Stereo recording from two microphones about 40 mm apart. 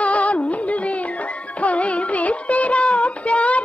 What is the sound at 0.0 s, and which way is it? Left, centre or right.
Music, left.